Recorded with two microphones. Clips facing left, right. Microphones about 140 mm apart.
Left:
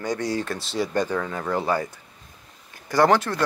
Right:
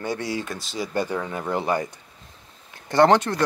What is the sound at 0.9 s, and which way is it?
Speech, 10° right (ahead or behind).